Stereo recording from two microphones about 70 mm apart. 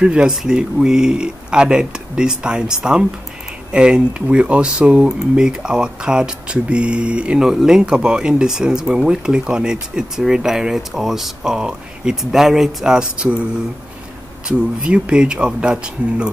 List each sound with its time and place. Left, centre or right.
0.0 s speech: centre
14.8 s speech: centre